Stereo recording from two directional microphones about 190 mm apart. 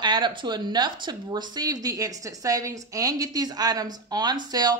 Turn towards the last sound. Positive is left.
turn(degrees=-20)  # may be behind; listen again after turning